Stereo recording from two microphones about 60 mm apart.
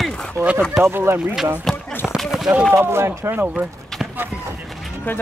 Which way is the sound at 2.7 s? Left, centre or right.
Right.